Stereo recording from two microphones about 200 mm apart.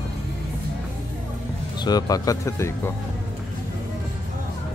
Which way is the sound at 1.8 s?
20° left (ahead or behind).